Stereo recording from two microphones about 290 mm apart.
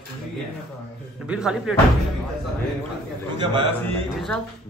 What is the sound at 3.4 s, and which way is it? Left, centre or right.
Speech, centre.